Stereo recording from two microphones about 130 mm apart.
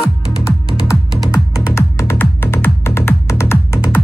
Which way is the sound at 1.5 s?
25° left (ahead or behind).